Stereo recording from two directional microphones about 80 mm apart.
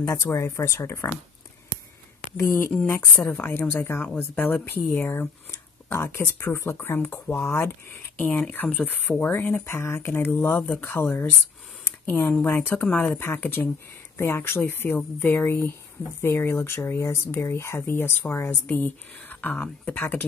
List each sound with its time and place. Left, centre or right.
0.1 s speech: left
2.3 s speech: left
3.2 s a woman's voice: left
8.2 s speech: centre
9.3 s a woman's voice: left